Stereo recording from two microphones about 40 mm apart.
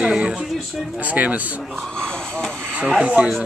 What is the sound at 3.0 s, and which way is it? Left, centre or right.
Speech, right.